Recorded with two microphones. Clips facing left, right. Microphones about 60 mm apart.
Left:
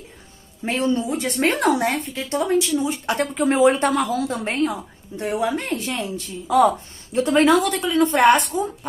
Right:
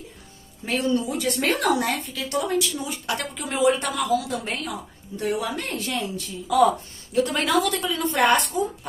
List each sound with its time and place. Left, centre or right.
0.7 s a woman's voice: left